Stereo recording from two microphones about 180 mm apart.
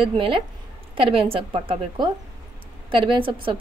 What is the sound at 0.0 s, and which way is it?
A woman's voice, 30° right (ahead or behind).